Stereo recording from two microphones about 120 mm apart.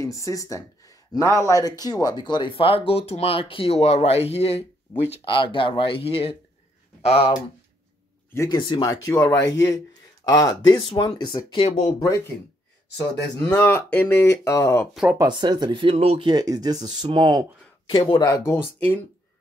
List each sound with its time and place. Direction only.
0.0 s speech: 25° left (ahead or behind); by 5.0 s 60° left (ahead or behind)
5.2 s speech: 45° left (ahead or behind)
8.5 s speech: 40° left (ahead or behind)
8.8 s speech: 30° left (ahead or behind)
11.6 s speech: 60° left (ahead or behind)
13.6 s speech: 20° left (ahead or behind)
15.1 s speech: 40° right (ahead or behind)
16.3 s speech: 35° right (ahead or behind)
17.8 s speech: 45° left (ahead or behind)
18.3 s speech: 20° left (ahead or behind)